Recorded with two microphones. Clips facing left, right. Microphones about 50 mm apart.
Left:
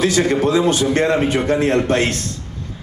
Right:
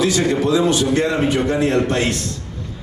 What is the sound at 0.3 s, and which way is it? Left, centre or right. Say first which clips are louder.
A man's voice: left 1 dB; left.